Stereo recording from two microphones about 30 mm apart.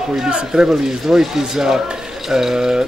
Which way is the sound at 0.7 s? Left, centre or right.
Centre.